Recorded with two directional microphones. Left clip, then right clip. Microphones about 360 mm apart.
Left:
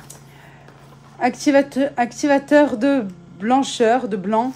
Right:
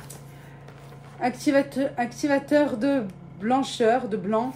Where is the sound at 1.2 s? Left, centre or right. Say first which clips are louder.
Left 6 dB; left.